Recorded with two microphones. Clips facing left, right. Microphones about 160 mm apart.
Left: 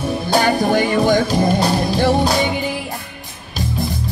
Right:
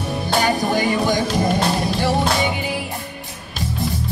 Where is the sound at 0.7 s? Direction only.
55° left (ahead or behind).